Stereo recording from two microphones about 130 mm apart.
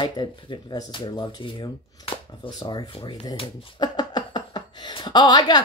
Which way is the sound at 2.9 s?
50° left (ahead or behind).